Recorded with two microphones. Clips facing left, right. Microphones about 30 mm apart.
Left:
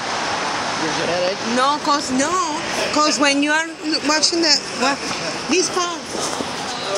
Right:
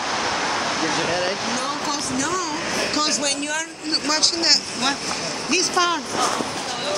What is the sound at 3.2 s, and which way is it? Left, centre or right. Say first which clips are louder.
Speech: left 8 dB; left.